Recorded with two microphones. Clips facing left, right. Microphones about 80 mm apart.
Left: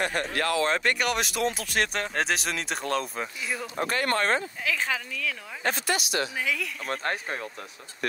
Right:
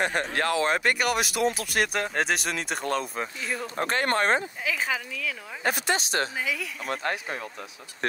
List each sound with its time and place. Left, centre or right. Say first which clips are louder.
0.0 s speech: right 1 dB; right
0.7 s speech: right 1 dB; centre
3.6 s speech: right 1 dB; right
4.6 s speech: even; centre
5.9 s speech: right 1 dB; right
6.3 s speech: left 1 dB; centre
8.0 s speech: right 2 dB; right